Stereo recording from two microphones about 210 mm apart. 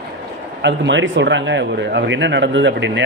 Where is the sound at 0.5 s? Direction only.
60° right (ahead or behind).